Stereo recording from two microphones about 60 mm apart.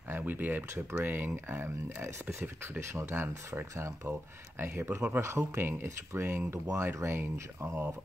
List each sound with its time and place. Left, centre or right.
0.1 s speech: right